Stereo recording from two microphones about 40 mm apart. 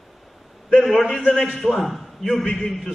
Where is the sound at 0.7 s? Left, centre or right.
Centre.